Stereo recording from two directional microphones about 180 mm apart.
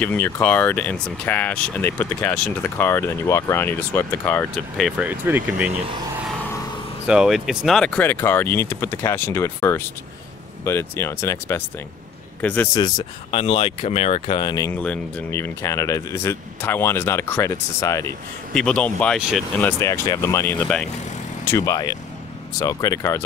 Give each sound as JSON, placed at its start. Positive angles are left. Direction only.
{"t": 0.0, "sound": "speech", "side_deg": 10}
{"t": 4.7, "sound": "speech", "side_deg": 0}
{"t": 7.1, "sound": "speech", "side_deg": -5}
{"t": 12.7, "sound": "speech", "side_deg": 25}
{"t": 14.8, "sound": "speech", "side_deg": 5}
{"t": 18.5, "sound": "speech", "side_deg": 5}
{"t": 19.6, "sound": "speech", "side_deg": 15}